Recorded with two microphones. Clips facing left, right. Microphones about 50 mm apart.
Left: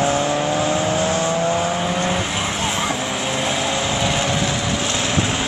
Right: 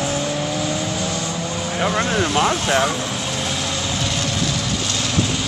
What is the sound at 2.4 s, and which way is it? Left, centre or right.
Vehicle, right.